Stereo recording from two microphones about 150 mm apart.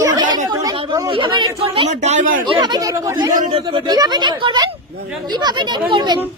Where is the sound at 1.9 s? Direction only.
50° right (ahead or behind).